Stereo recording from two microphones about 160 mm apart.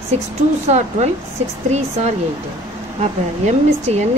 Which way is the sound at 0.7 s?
45° right (ahead or behind).